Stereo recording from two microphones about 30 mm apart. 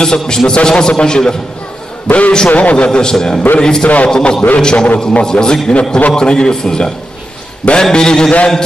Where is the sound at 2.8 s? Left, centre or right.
Left.